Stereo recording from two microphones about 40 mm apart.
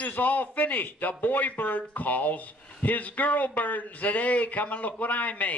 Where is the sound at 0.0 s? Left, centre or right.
Left.